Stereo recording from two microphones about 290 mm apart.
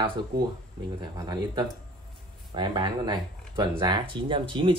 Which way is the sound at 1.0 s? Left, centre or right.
Centre.